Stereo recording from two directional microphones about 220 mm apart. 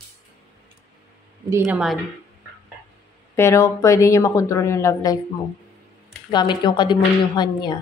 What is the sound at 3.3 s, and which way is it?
Speech, 15° left (ahead or behind).